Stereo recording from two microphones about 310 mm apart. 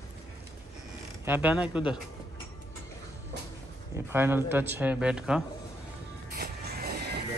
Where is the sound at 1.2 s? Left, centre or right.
Centre.